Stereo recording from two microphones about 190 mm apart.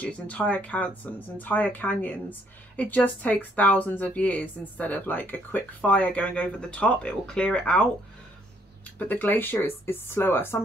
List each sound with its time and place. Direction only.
0.0 s speech: 5° left (ahead or behind)
8.9 s speech: 10° left (ahead or behind)